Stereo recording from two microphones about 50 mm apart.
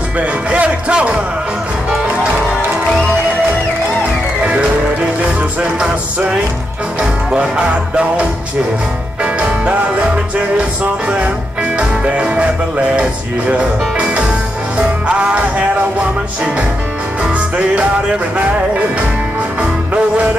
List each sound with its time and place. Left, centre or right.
0.2 s speech: right
4.5 s music: right
17.3 s music: right
19.6 s music: right